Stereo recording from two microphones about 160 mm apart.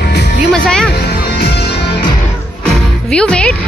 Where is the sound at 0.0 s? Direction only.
90° left.